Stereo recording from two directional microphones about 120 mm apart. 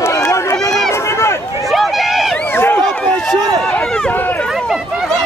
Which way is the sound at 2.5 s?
15° left (ahead or behind).